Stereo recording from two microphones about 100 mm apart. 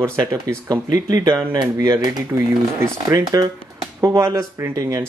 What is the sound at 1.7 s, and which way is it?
Speech, 30° right (ahead or behind).